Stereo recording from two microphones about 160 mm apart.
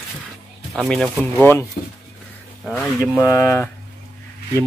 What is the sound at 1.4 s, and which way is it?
Speech, 15° left (ahead or behind).